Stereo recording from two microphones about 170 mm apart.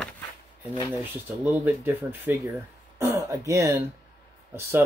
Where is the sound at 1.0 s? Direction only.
15° right (ahead or behind).